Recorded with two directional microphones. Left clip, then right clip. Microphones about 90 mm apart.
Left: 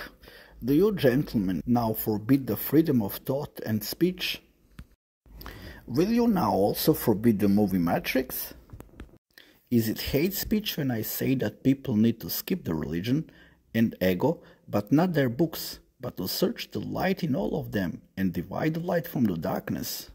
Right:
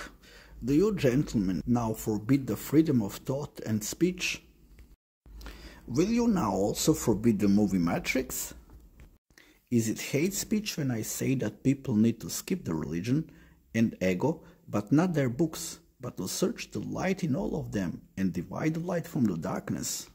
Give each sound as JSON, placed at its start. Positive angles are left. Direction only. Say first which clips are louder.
{"t": 0.0, "sound": "speech", "louder": "left 3 dB", "side_deg": 30}
{"t": 5.5, "sound": "speech", "louder": "left 3 dB", "side_deg": 20}
{"t": 9.7, "sound": "speech", "louder": "left 3 dB", "side_deg": 30}